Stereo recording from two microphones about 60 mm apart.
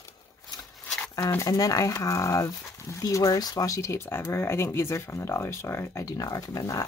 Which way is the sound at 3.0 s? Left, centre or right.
Left.